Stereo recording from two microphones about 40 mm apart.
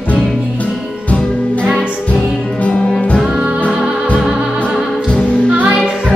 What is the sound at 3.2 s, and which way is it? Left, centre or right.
Music, right.